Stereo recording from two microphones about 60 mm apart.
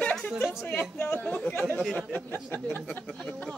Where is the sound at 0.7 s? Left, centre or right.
Left.